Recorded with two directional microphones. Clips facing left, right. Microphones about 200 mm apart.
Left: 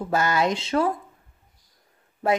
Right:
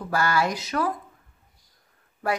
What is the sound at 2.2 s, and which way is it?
Speech, 25° left (ahead or behind).